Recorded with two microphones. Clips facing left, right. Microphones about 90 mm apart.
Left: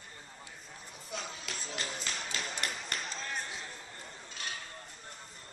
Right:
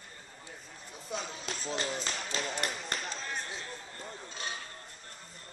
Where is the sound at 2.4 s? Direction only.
Centre (ahead or behind).